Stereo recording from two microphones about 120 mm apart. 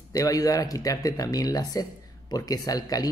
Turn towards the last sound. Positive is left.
turn(degrees=30)  # may be behind; listen again after turning